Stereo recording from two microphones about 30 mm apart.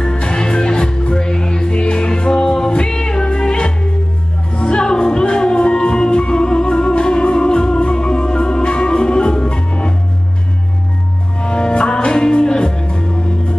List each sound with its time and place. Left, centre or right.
0.0 s music: left
11.4 s music: left